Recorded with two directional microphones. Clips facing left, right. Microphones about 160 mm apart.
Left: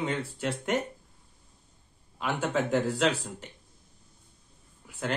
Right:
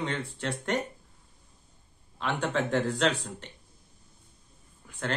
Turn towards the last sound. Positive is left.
turn(degrees=10)  # may be behind; listen again after turning